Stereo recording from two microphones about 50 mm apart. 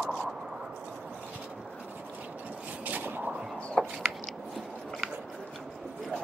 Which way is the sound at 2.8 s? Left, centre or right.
Right.